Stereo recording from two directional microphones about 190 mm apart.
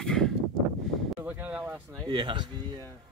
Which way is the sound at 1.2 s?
10° right (ahead or behind).